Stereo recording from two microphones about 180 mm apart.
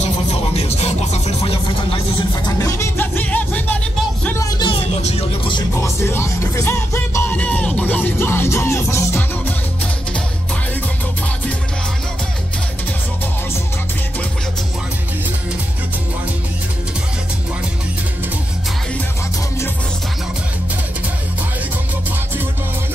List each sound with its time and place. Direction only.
0.6 s speech: 35° left (ahead or behind)
2.4 s music: 15° left (ahead or behind); by 5.6 s 35° left (ahead or behind)
5.8 s music: 15° left (ahead or behind)